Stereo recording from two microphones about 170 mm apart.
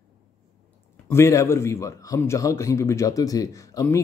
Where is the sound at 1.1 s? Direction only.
15° left (ahead or behind).